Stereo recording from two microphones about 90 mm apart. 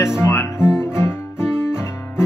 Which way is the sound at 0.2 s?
30° left (ahead or behind).